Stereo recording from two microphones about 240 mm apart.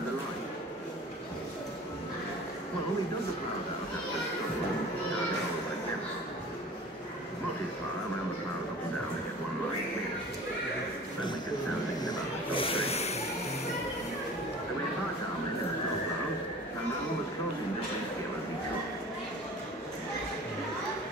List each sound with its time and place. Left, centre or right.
12.0 s snake: centre